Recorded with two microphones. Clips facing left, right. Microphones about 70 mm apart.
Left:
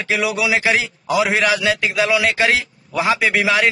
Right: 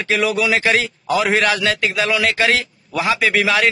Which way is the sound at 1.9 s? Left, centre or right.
Centre.